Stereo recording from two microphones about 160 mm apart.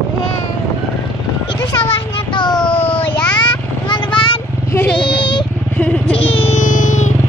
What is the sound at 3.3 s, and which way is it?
Vehicle, 30° left (ahead or behind).